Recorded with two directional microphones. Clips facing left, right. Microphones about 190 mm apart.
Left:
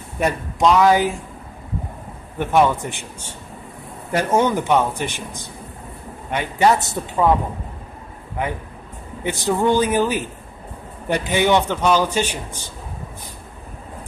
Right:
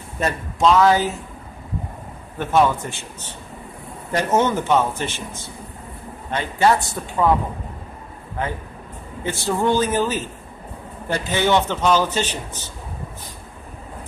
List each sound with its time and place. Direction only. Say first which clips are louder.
0.2 s a man's voice: left 1 dB; 15° left (ahead or behind)
2.3 s a man's voice: left 1 dB; 15° left (ahead or behind)
4.1 s a man's voice: left 1 dB; 10° left (ahead or behind)
8.4 s a man's voice: left 1 dB; 15° left (ahead or behind)